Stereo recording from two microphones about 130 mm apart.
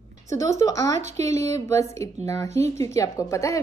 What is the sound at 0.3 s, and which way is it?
A woman's voice, 25° left (ahead or behind).